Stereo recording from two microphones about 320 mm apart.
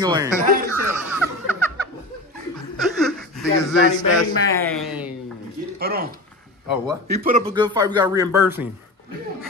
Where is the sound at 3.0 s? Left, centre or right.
Centre.